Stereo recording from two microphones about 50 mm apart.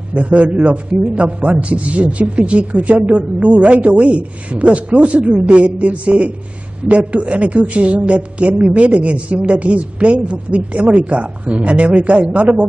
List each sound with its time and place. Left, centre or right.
0.1 s a man's voice: right